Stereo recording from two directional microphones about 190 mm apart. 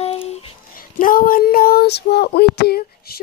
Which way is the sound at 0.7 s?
45° left (ahead or behind).